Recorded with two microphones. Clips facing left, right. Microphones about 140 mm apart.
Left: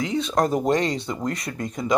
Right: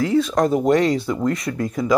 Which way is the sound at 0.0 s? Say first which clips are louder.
Right 7 dB; 20° left (ahead or behind).